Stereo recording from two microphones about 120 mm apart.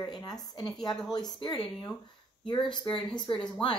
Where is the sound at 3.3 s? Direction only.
45° left (ahead or behind).